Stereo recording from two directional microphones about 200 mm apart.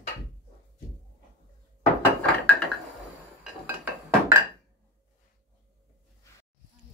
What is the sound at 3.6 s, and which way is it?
Dishes, 10° right (ahead or behind).